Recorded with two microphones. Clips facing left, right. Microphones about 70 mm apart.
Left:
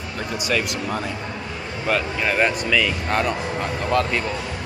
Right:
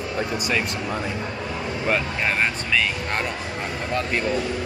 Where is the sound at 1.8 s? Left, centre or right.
Centre.